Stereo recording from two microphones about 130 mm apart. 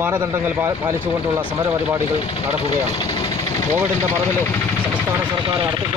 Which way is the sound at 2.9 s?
30° left (ahead or behind).